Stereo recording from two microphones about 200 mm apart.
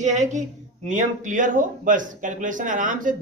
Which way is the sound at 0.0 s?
35° right (ahead or behind).